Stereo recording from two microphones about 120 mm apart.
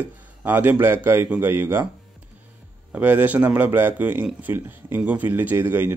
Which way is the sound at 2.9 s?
15° right (ahead or behind).